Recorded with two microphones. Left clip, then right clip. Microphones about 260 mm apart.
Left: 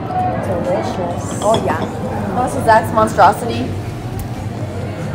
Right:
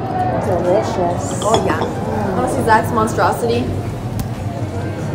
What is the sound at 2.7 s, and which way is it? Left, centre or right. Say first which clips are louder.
Speech: left 3 dB; centre.